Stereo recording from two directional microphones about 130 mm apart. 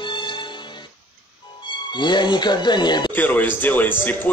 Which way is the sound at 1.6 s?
35° left (ahead or behind).